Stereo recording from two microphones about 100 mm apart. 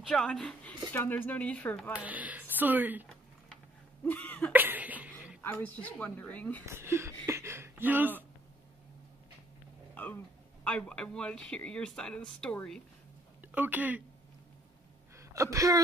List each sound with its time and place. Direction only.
0.1 s a woman's voice: 5° left (ahead or behind)
0.9 s a man's voice: 20° left (ahead or behind)
1.9 s speech: 15° right (ahead or behind)
4.0 s cough: 15° left (ahead or behind)
4.5 s cough: 20° right (ahead or behind)
5.4 s a man's voice: 20° left (ahead or behind)
6.6 s speech: 25° right (ahead or behind)
7.2 s a sound: 25° right (ahead or behind)
9.9 s a man's voice: 15° left (ahead or behind)
13.6 s speech: 15° right (ahead or behind)
15.1 s a woman's voice: 30° right (ahead or behind)